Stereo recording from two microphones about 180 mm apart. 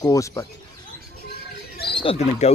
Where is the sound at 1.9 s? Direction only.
30° left (ahead or behind).